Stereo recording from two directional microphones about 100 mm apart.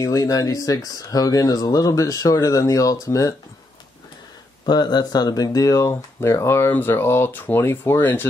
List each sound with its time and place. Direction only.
0.0 s speech: 35° left (ahead or behind)
4.6 s speech: 45° left (ahead or behind); by 8.3 s 20° left (ahead or behind)